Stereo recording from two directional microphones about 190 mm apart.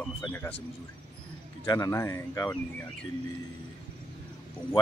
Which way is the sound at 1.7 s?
15° left (ahead or behind).